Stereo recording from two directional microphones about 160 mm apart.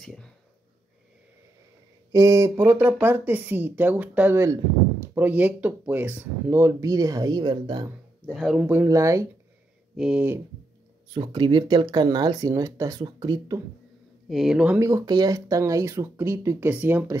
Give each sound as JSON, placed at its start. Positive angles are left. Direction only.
{"t": 0.0, "sound": "a sound", "side_deg": 5}
{"t": 2.1, "sound": "speech", "side_deg": -20}
{"t": 8.3, "sound": "speech", "side_deg": -5}
{"t": 8.6, "sound": "speech", "side_deg": -15}
{"t": 9.9, "sound": "speech", "side_deg": -5}
{"t": 11.1, "sound": "speech", "side_deg": -30}
{"t": 14.3, "sound": "speech", "side_deg": 0}
{"t": 14.8, "sound": "speech", "side_deg": -20}